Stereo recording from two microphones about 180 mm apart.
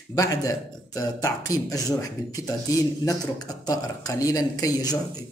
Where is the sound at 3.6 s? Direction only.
20° left (ahead or behind).